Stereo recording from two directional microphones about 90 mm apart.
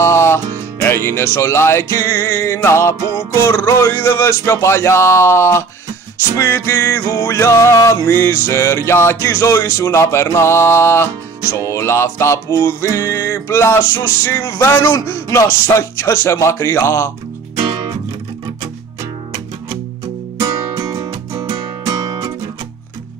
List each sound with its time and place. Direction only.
0.0 s music: 30° left (ahead or behind)
20.3 s music: 40° right (ahead or behind)